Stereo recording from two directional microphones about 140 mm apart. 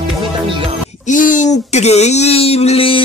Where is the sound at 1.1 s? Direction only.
65° left (ahead or behind).